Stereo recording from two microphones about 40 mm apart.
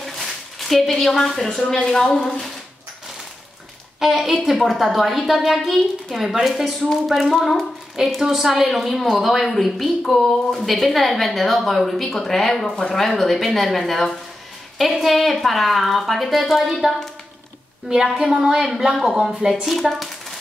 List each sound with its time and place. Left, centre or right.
0.0 s a woman's voice: centre
4.0 s a woman's voice: centre
18.1 s a woman's voice: centre
18.6 s a woman's voice: centre